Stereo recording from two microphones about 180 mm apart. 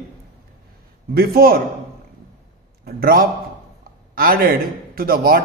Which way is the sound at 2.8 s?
55° right (ahead or behind).